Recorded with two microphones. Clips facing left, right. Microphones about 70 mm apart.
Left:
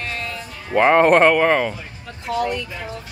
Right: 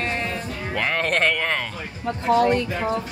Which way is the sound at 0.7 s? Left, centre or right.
Left.